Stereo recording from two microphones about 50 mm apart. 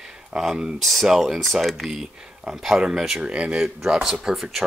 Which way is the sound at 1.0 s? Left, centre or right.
Centre.